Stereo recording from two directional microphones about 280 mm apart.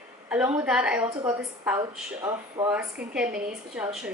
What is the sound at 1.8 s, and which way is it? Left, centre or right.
A woman's voice, centre.